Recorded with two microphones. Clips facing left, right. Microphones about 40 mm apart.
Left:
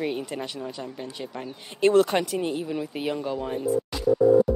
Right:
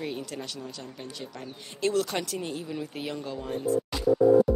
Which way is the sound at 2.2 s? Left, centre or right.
Centre.